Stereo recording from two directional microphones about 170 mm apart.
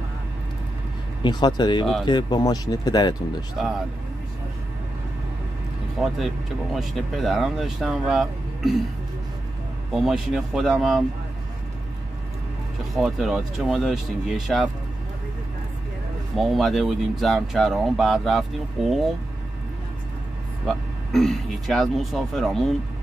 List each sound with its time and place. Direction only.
1.2 s speech: 25° left (ahead or behind)
6.1 s speech: centre (ahead or behind)
9.9 s speech: centre (ahead or behind)
12.9 s speech: centre (ahead or behind)
16.3 s speech: centre (ahead or behind)
20.6 s speech: centre (ahead or behind)